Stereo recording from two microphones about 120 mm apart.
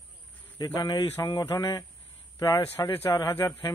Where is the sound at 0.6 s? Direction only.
35° left (ahead or behind).